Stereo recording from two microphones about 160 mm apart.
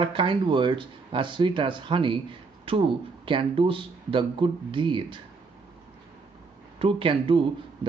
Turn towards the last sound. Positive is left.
turn(degrees=-35)  # may be behind; listen again after turning